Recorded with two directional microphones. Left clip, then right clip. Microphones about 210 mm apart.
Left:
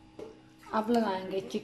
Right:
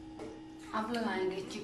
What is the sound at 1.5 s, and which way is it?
Speech, 40° left (ahead or behind).